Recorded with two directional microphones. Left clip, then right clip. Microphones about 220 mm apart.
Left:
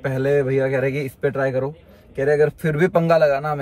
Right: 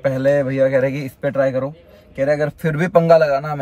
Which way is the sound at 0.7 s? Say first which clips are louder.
Right 4 dB; 45° left (ahead or behind).